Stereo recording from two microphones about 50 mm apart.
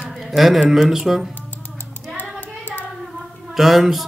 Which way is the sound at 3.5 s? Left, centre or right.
Centre.